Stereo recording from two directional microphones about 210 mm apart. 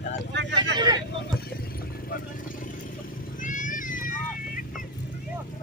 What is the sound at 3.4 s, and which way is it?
Cat, 40° left (ahead or behind).